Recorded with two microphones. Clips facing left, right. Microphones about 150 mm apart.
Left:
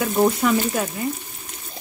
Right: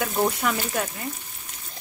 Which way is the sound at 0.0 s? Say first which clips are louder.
Left 5 dB; 5° left (ahead or behind).